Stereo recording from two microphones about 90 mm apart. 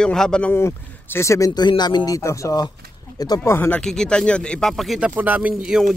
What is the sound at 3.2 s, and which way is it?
Speech, 50° left (ahead or behind).